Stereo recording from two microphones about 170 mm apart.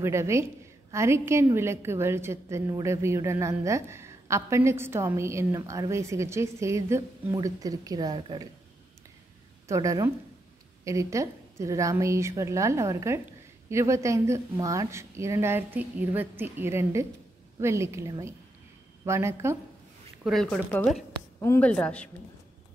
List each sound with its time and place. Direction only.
0.0 s a woman's voice: 15° right (ahead or behind)
9.7 s a woman's voice: 20° right (ahead or behind)
20.2 s a woman's voice: centre (ahead or behind)